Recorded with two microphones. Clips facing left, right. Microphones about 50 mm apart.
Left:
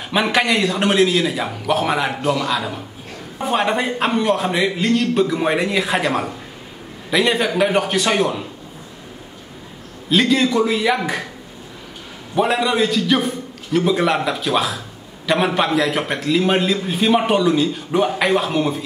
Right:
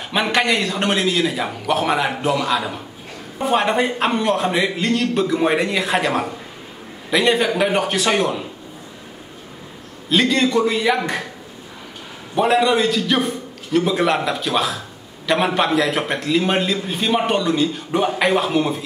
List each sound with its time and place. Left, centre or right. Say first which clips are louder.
0.1 s a man's voice: left 1 dB; centre
10.0 s a man's voice: left 1 dB; centre
12.4 s a man's voice: right 1 dB; centre